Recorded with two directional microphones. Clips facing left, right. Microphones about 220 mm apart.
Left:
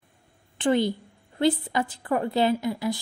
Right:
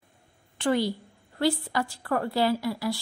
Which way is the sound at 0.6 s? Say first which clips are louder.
Left 3 dB; 20° left (ahead or behind).